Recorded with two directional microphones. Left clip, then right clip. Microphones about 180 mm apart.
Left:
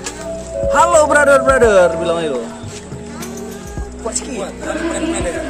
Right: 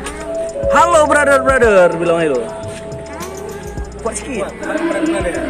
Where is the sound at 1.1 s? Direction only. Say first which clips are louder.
Left 1 dB; 15° right (ahead or behind).